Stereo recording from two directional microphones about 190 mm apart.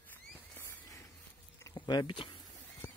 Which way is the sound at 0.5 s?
15° left (ahead or behind).